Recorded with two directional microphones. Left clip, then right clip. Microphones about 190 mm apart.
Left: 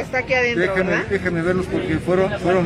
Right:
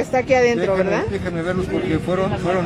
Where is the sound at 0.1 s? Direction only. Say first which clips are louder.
Right 3 dB; 25° right (ahead or behind).